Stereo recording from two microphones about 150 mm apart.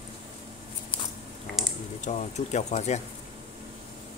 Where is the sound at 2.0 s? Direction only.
50° left (ahead or behind).